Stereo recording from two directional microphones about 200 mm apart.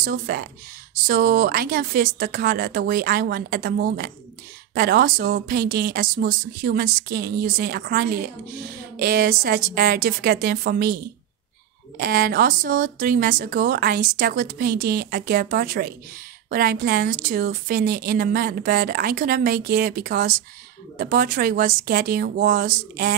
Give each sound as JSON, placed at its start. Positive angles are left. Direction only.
{"t": 0.0, "sound": "speech", "side_deg": -50}
{"t": 12.0, "sound": "speech", "side_deg": -50}